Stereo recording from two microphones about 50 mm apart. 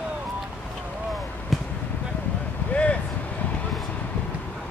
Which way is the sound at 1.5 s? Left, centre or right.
Centre.